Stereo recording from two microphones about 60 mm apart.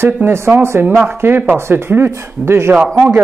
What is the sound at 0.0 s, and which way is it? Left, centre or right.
Speech, right.